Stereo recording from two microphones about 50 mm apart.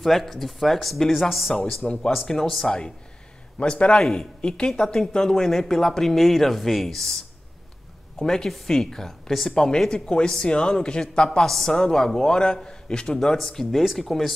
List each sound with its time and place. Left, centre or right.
0.0 s speech: centre
1.5 s a man's voice: centre
4.0 s speech: centre
4.4 s a man's voice: centre
8.3 s a man's voice: centre
11.4 s a man's voice: centre